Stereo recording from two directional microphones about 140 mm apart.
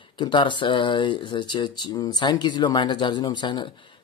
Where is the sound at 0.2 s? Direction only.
35° left (ahead or behind).